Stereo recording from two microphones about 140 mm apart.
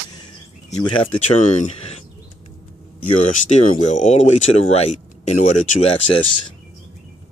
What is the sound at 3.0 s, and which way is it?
Speech, 65° left (ahead or behind).